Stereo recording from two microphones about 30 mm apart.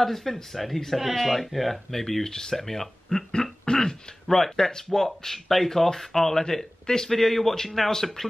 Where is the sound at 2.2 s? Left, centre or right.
Left.